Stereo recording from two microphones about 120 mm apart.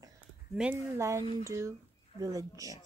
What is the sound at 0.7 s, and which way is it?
Speech, 25° right (ahead or behind).